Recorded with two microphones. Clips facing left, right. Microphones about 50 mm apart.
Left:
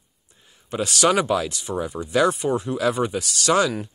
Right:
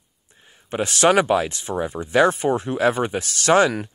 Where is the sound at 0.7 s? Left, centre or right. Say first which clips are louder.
Right 2 dB; right.